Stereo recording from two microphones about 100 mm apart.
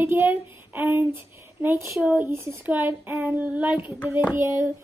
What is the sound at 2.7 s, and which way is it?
Child singing, 20° right (ahead or behind).